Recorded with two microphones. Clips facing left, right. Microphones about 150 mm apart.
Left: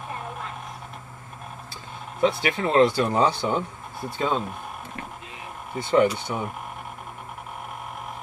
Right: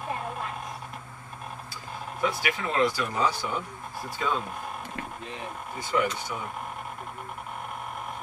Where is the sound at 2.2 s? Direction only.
25° left (ahead or behind).